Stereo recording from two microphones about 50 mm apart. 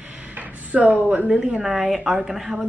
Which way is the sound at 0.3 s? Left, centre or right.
Right.